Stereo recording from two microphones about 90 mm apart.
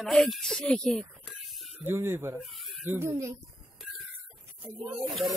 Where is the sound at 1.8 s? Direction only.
25° right (ahead or behind).